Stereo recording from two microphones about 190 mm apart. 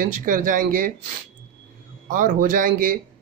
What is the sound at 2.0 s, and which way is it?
Speech, 45° right (ahead or behind).